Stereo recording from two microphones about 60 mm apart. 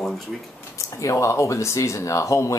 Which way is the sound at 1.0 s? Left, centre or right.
Left.